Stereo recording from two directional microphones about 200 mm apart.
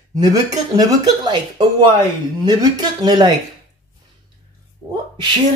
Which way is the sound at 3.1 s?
20° right (ahead or behind).